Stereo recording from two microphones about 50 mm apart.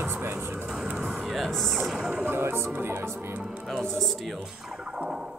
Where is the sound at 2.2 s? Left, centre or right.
Right.